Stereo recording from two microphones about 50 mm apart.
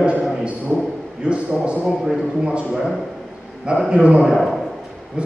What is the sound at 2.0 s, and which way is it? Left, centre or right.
Speech, centre.